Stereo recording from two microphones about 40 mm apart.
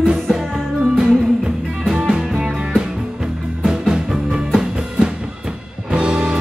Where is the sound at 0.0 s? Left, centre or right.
Right.